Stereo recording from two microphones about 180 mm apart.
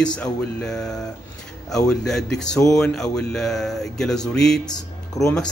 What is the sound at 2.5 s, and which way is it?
Speech, 20° left (ahead or behind).